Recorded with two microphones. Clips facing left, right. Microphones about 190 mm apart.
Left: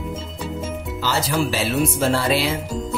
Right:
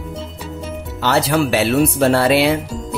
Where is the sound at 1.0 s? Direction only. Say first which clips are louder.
Right 6 dB; 65° right (ahead or behind).